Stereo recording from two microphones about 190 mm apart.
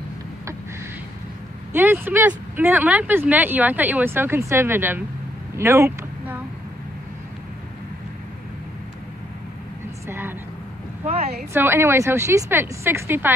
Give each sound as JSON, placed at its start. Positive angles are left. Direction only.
{"t": 1.7, "sound": "speech", "side_deg": -10}
{"t": 5.6, "sound": "vehicle", "side_deg": -15}
{"t": 10.0, "sound": "a sound", "side_deg": -10}
{"t": 11.1, "sound": "speech", "side_deg": -35}
{"t": 11.5, "sound": "speech", "side_deg": -10}